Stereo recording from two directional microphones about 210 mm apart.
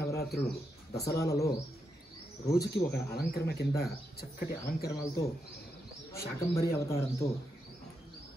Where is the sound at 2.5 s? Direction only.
50° left (ahead or behind).